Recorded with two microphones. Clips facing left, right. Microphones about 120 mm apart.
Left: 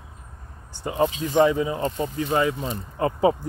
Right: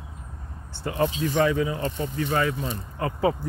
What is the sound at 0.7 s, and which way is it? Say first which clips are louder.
Speech: left 2 dB; 20° left (ahead or behind).